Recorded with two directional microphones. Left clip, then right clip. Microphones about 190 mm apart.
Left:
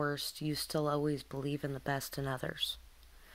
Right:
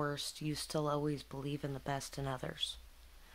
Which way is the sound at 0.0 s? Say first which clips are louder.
Left 3 dB; 15° left (ahead or behind).